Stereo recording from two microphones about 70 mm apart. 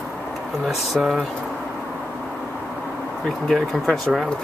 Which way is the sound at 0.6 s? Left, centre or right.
Centre.